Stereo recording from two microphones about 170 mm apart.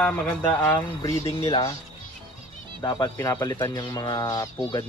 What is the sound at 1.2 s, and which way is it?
Speech, 35° left (ahead or behind).